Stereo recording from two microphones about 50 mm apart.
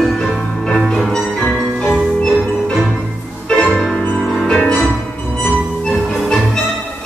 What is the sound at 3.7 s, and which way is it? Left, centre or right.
Music, centre.